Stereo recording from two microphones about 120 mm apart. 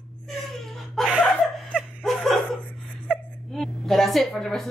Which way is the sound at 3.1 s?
Centre (ahead or behind).